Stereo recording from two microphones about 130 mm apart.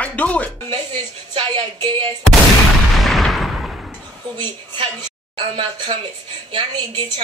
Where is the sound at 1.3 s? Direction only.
45° right (ahead or behind).